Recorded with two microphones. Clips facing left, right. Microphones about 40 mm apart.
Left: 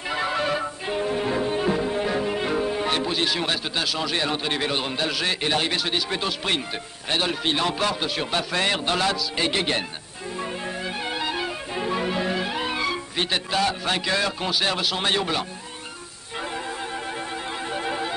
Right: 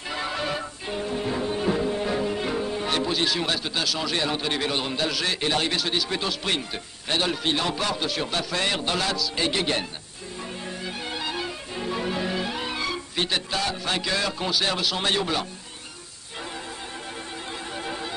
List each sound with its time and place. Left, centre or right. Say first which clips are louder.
0.1 s music: left 4 dB; centre